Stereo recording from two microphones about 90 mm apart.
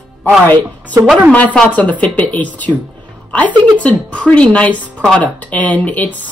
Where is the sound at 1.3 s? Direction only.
15° left (ahead or behind).